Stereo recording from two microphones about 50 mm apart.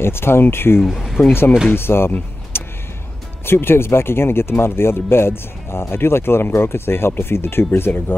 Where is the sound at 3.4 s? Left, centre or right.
Left.